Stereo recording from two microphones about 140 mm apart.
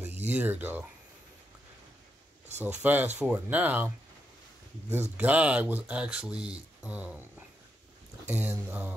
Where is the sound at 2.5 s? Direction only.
15° right (ahead or behind).